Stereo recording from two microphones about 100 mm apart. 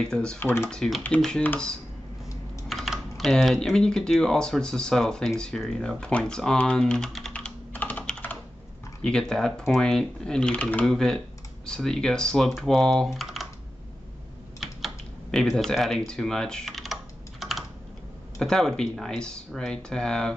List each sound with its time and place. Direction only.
0.0 s speech: 5° left (ahead or behind)
0.4 s speech: 20° left (ahead or behind)
0.7 s speech: 5° left (ahead or behind)
2.7 s speech: centre (ahead or behind)
7.3 s computer keyboard: 15° left (ahead or behind)
9.0 s speech: 5° left (ahead or behind)
10.9 s speech: 5° left (ahead or behind)
15.3 s speech: 5° left (ahead or behind)
16.1 s computer keyboard: 5° left (ahead or behind)
18.4 s speech: 5° left (ahead or behind)